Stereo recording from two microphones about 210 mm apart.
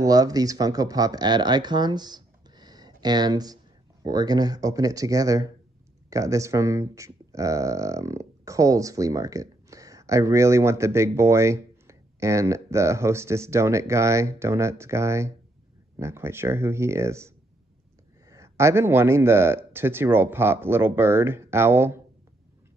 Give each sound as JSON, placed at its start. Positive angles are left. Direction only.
{"t": 0.0, "sound": "speech", "side_deg": -15}
{"t": 18.3, "sound": "speech", "side_deg": -15}